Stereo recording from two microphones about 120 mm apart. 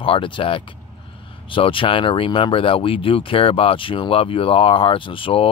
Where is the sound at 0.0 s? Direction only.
45° left (ahead or behind).